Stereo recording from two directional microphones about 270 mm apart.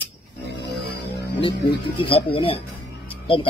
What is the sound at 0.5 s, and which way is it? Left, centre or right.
Music, left.